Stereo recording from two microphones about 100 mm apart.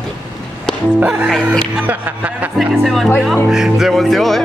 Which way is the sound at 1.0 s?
15° right (ahead or behind).